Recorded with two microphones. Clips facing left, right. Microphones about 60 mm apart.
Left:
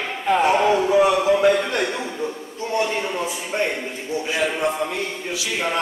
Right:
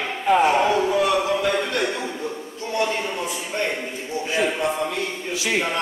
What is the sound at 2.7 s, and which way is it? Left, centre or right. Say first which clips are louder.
A man's voice: left 1 dB; centre.